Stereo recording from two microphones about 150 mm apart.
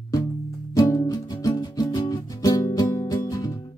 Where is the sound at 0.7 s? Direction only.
25° left (ahead or behind).